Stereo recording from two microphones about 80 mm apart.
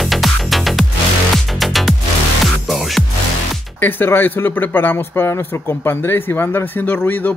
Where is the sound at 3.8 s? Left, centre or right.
Left.